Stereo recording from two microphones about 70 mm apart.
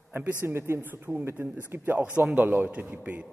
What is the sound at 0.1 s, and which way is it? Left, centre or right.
Speech, right.